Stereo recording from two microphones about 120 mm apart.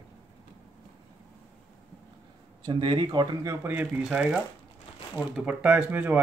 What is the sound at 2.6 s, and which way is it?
Speech, 40° right (ahead or behind).